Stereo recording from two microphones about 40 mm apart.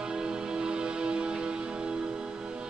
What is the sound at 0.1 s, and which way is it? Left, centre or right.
Music, centre.